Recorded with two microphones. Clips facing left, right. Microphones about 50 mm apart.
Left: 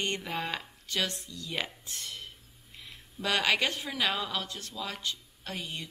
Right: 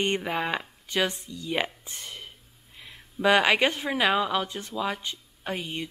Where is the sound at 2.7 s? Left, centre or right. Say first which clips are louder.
Right 7 dB; right.